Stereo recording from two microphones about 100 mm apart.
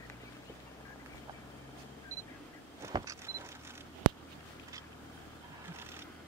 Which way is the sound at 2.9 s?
45° right (ahead or behind).